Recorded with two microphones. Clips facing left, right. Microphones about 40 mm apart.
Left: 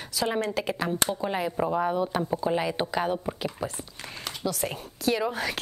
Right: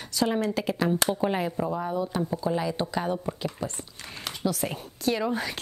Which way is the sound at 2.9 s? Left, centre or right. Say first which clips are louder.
Left 3 dB; left.